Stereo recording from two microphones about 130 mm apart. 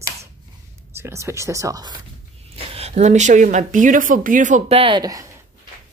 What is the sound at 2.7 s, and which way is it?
Speech, 60° right (ahead or behind).